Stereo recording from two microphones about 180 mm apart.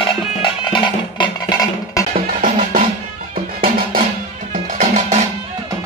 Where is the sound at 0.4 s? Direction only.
25° left (ahead or behind).